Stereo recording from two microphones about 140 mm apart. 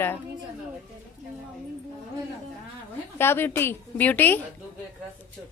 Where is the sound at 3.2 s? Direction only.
15° left (ahead or behind).